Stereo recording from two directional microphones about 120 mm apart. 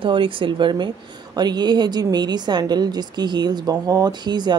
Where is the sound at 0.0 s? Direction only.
45° right (ahead or behind).